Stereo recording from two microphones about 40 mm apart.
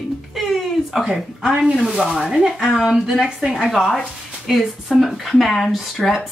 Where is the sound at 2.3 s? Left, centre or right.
Centre.